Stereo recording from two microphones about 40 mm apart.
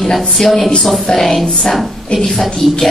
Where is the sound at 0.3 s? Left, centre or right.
Centre.